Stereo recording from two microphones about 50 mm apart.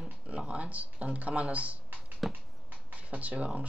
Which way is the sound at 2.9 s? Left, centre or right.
Right.